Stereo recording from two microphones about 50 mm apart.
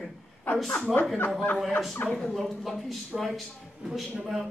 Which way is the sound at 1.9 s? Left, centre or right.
Left.